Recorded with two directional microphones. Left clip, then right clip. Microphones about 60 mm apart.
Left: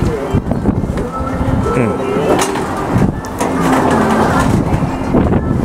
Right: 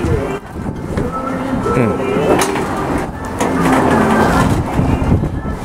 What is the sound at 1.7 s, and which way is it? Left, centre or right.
Music, centre.